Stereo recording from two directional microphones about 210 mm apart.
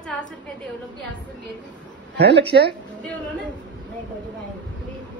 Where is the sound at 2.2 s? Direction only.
55° right (ahead or behind).